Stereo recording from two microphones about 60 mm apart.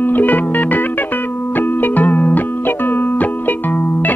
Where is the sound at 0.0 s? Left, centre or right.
Left.